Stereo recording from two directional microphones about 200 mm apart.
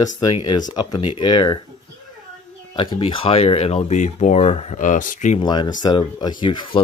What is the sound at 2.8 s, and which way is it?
Speech, 25° left (ahead or behind).